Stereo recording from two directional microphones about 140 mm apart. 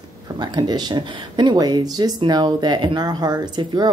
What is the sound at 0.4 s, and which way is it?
Speech, 30° right (ahead or behind).